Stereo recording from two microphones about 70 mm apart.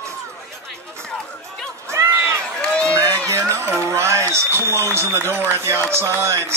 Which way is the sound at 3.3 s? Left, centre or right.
Right.